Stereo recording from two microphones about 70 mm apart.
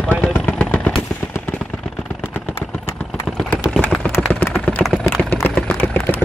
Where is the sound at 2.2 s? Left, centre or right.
Left.